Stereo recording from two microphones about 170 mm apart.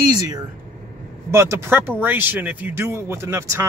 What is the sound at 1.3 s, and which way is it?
A man's voice, 15° right (ahead or behind).